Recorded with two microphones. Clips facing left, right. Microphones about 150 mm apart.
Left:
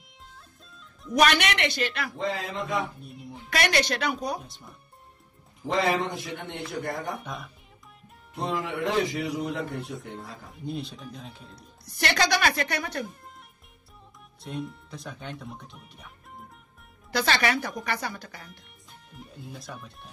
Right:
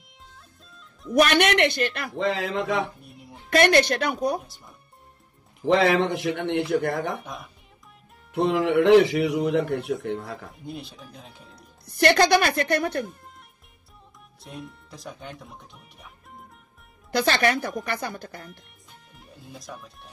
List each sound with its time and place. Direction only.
1.2 s a woman's voice: 55° right (ahead or behind)
2.1 s a man's voice: 80° right
3.1 s music: centre (ahead or behind)
3.4 s a woman's voice: 55° right (ahead or behind)
4.4 s speech: centre (ahead or behind)
5.7 s a man's voice: 75° right (ahead or behind)
7.2 s speech: centre (ahead or behind)
8.3 s a man's voice: 80° right
10.5 s speech: centre (ahead or behind)
11.8 s a woman's voice: 55° right (ahead or behind)
14.4 s speech: centre (ahead or behind)
17.1 s a woman's voice: 50° right (ahead or behind)
19.1 s speech: centre (ahead or behind)